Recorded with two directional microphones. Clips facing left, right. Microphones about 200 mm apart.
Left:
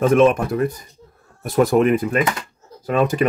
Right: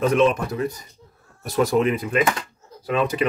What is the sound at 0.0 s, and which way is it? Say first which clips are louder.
Speech: left 4 dB; 50° left (ahead or behind).